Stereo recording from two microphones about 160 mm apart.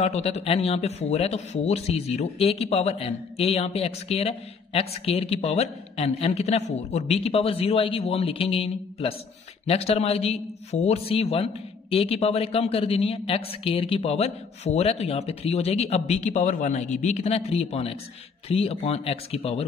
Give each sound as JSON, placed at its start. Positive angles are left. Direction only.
{"t": 0.0, "sound": "speech", "side_deg": 40}